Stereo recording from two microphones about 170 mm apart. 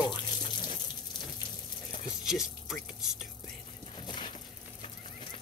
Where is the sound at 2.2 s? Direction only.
5° right (ahead or behind).